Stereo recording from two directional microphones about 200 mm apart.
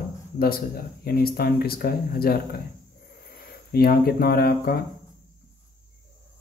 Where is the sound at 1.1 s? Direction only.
50° left (ahead or behind).